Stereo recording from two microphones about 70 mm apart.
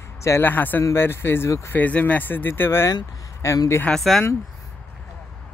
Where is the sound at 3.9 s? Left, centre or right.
Centre.